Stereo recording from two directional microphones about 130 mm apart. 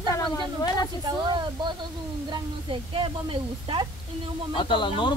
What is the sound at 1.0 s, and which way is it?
A woman's voice, 35° right (ahead or behind).